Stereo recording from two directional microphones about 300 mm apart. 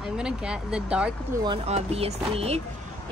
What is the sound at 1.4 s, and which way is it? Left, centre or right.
Speech, centre.